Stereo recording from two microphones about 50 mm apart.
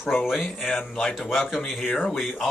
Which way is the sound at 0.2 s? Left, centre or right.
Centre.